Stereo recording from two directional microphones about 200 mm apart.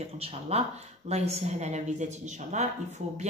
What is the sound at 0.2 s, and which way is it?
Speech, 30° right (ahead or behind).